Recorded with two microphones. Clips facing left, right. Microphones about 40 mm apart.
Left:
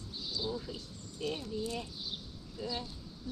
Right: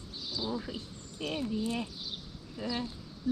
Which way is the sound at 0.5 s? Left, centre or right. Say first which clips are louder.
Right 3 dB; right.